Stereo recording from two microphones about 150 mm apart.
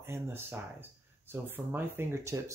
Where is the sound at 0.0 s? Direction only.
15° right (ahead or behind).